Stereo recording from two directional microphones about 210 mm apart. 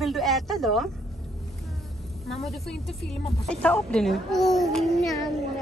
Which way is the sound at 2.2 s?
Centre (ahead or behind).